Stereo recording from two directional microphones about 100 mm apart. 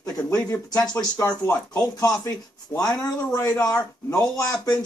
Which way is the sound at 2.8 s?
35° left (ahead or behind).